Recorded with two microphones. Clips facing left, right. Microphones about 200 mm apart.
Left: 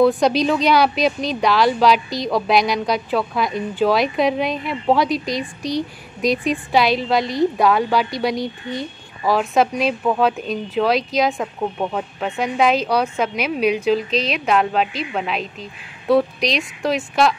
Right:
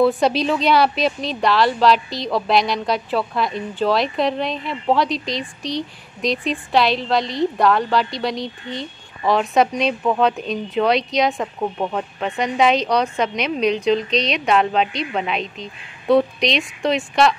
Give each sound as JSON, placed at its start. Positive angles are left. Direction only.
{"t": 0.0, "sound": "speech", "side_deg": -5}
{"t": 8.4, "sound": "speech", "side_deg": -20}
{"t": 9.2, "sound": "speech", "side_deg": 0}